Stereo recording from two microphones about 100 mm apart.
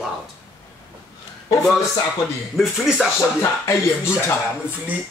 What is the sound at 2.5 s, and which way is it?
Speech, 5° right (ahead or behind).